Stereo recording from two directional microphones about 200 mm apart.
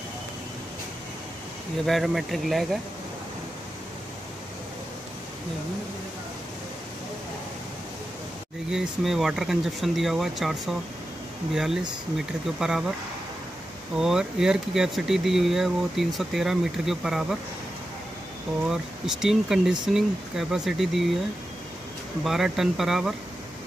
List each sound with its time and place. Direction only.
1.9 s speech: centre (ahead or behind)
8.6 s speech: centre (ahead or behind)
13.9 s speech: 5° right (ahead or behind)
18.7 s speech: centre (ahead or behind)
22.2 s speech: centre (ahead or behind)